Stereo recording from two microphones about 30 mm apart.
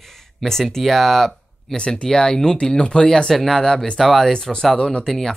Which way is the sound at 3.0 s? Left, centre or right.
Left.